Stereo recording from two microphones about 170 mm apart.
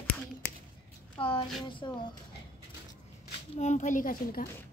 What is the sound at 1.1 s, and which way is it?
Speech, 30° left (ahead or behind).